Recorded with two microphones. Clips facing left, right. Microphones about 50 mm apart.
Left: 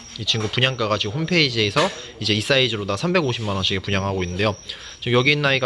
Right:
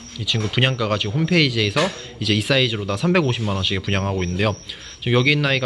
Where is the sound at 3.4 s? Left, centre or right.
Centre.